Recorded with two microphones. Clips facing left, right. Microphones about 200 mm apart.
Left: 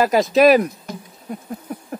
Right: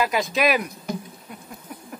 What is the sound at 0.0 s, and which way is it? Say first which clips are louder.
Speech: left 8 dB; 40° left (ahead or behind).